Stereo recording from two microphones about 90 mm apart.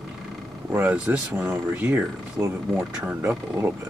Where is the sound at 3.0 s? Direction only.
20° right (ahead or behind).